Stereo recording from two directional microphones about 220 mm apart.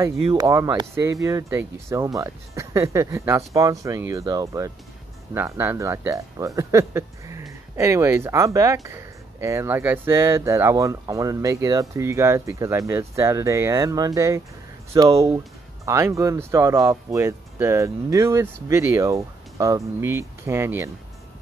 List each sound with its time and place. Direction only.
0.2 s speech: 20° right (ahead or behind)